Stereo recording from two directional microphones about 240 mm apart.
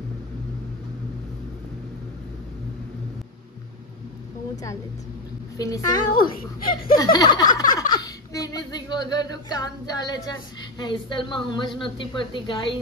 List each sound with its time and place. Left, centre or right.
5.6 s speech: centre
6.1 s speech: left
7.0 s speech: centre